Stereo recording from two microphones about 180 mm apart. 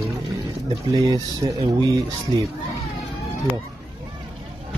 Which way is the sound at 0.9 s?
20° right (ahead or behind).